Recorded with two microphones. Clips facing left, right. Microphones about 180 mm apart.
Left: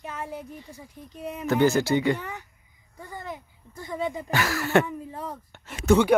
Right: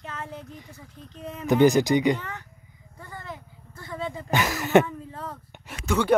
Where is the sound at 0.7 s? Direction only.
10° left (ahead or behind).